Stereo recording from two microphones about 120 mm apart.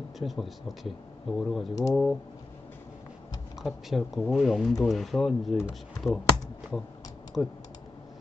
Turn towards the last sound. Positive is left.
turn(degrees=5)  # may be behind; listen again after turning